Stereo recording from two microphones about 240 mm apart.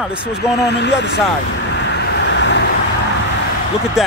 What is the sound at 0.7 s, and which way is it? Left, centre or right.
Speech, left.